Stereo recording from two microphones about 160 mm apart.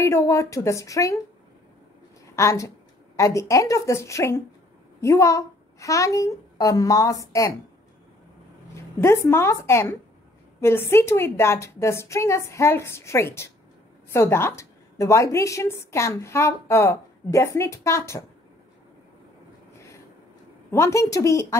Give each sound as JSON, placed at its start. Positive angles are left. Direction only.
{"t": 0.0, "sound": "a woman's voice", "side_deg": 15}
{"t": 2.3, "sound": "a woman's voice", "side_deg": 20}
{"t": 8.7, "sound": "a woman's voice", "side_deg": 15}
{"t": 20.7, "sound": "a woman's voice", "side_deg": 20}